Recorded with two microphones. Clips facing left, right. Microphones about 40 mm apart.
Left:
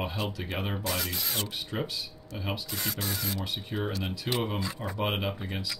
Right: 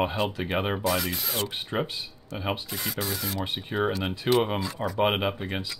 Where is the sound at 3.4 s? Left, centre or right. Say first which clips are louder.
Right 6 dB; right.